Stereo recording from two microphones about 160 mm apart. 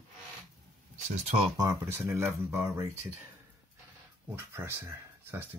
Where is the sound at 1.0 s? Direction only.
40° right (ahead or behind).